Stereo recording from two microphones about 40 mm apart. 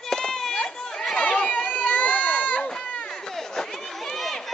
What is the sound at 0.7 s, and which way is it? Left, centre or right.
Chatter, centre.